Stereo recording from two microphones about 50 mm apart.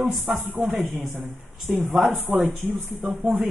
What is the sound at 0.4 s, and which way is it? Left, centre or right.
Speech, centre.